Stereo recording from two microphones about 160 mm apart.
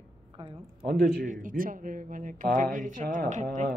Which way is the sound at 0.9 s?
50° right (ahead or behind).